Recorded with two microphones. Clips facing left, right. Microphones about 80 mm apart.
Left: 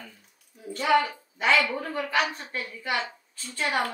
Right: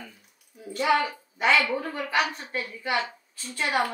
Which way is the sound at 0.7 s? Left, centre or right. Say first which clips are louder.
Left 1 dB; centre.